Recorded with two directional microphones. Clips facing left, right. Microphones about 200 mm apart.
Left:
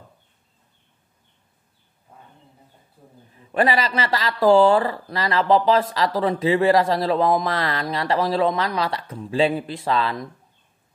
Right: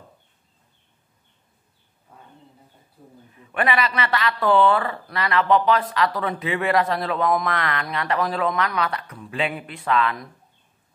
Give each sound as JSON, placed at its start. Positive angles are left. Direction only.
{"t": 3.3, "sound": "speech", "side_deg": 30}